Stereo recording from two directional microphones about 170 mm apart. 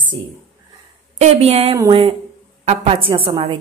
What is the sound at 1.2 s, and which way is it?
A woman's voice, 35° right (ahead or behind).